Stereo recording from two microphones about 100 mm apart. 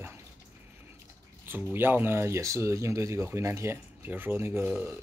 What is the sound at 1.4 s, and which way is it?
Speech, 20° right (ahead or behind).